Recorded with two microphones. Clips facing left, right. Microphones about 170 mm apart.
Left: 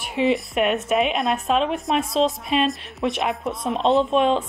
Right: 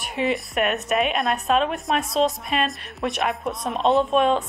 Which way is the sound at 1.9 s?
50° right (ahead or behind).